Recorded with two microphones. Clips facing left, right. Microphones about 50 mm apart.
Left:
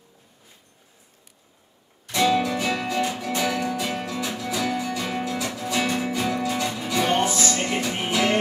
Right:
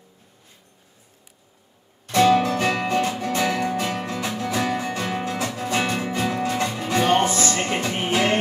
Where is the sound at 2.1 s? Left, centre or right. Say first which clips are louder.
Right 4 dB; right.